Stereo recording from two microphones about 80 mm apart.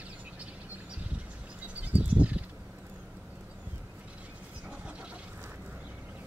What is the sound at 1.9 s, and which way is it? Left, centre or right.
Bird, centre.